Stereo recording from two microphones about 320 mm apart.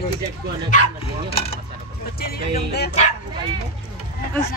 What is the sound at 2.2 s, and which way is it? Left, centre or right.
Speech, left.